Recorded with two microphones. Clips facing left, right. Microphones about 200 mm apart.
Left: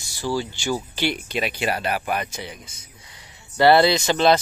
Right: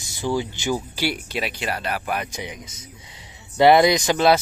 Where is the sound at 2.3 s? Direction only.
15° right (ahead or behind).